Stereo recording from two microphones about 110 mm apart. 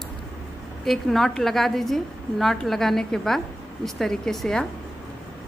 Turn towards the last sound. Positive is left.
turn(degrees=5)  # may be behind; listen again after turning